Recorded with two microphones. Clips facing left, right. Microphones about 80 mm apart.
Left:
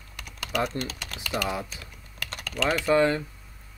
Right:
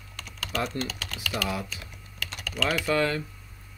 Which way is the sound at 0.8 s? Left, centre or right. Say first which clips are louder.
Right 1 dB; left.